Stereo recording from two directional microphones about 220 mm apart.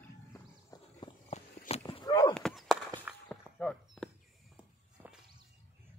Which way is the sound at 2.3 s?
Centre (ahead or behind).